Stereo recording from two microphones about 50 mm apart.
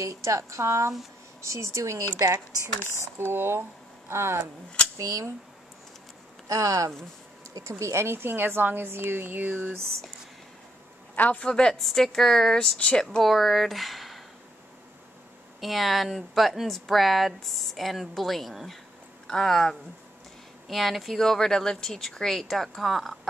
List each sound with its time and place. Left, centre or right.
0.0 s speech: right
3.2 s a woman's voice: right
6.5 s speech: right
7.8 s a woman's voice: right
11.1 s speech: left
11.4 s speech: centre
11.8 s speech: centre
12.7 s speech: left
13.2 s speech: centre
15.6 s speech: centre
21.2 s speech: centre